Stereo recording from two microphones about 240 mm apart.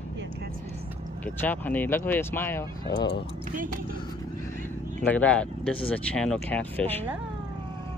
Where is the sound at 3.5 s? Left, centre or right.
Right.